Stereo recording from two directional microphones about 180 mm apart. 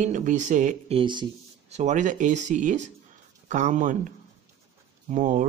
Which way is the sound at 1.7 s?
40° right (ahead or behind).